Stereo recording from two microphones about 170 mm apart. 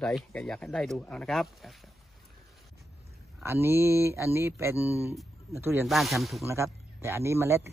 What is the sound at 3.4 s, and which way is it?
A man's voice, 15° right (ahead or behind).